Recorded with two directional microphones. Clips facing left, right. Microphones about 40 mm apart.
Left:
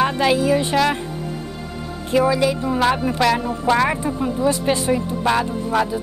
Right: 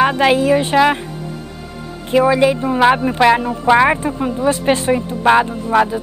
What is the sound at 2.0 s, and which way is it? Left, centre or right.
A woman's voice, right.